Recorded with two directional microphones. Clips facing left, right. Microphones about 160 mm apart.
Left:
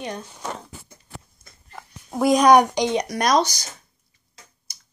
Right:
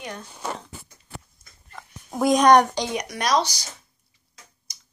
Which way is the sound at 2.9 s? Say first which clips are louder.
Left 6 dB; 30° left (ahead or behind).